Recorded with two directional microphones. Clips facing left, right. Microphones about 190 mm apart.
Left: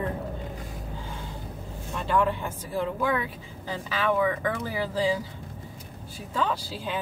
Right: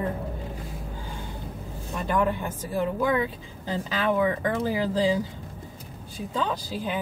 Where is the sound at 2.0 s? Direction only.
15° right (ahead or behind).